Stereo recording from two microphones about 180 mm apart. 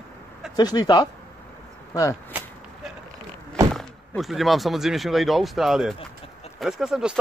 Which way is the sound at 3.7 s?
Centre (ahead or behind).